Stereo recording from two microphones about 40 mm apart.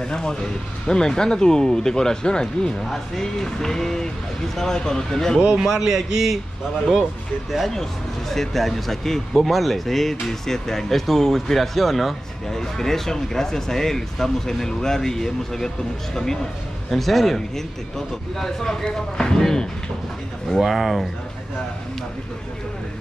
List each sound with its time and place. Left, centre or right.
0.1 s speech: centre
5.6 s a man's voice: centre
7.7 s speech: centre
16.9 s speech: centre
20.6 s speech: centre